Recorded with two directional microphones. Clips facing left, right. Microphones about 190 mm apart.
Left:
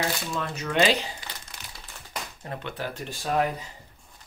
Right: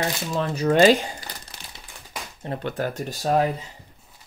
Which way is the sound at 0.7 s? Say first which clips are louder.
Right 6 dB; 50° right (ahead or behind).